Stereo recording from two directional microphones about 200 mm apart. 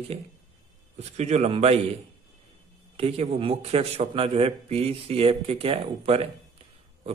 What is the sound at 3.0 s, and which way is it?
Speech, 30° right (ahead or behind).